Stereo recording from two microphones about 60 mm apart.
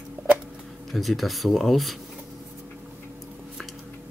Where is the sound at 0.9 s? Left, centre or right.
Centre.